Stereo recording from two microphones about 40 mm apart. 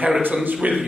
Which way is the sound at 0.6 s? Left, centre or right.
Right.